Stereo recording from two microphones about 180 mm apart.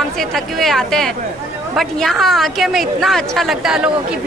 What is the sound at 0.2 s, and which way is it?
Speech, centre (ahead or behind).